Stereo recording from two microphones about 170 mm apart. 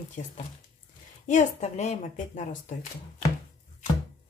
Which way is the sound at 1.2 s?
45° left (ahead or behind).